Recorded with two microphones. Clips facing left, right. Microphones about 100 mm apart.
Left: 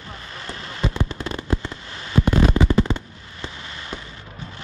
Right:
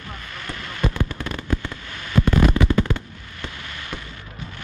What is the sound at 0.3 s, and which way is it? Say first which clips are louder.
Fireworks: even; 30° left (ahead or behind).